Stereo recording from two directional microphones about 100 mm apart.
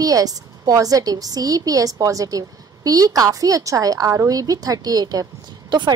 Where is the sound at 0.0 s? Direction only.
35° right (ahead or behind).